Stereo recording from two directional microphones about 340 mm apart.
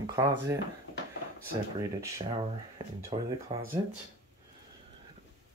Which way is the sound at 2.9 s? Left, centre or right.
Centre.